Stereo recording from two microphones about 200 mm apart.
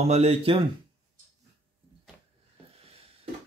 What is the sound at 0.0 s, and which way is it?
Speech, 30° right (ahead or behind).